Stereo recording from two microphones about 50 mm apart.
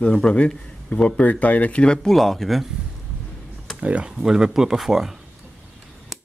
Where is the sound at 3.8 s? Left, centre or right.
Right.